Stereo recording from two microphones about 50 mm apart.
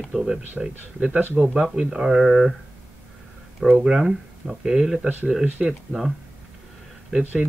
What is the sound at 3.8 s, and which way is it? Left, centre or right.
Speech, centre.